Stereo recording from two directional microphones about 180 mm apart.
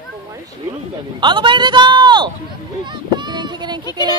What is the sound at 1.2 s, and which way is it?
Speech, 25° right (ahead or behind).